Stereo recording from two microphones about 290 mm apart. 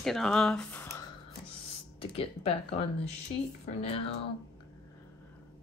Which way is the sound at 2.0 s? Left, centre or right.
Centre.